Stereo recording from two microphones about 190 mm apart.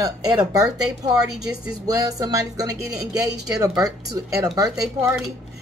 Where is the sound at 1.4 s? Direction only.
20° right (ahead or behind).